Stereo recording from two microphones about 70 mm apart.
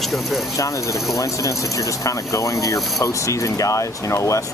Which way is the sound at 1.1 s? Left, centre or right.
Left.